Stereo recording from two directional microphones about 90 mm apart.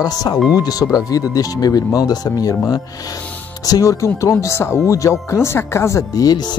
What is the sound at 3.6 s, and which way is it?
Speech, 40° left (ahead or behind).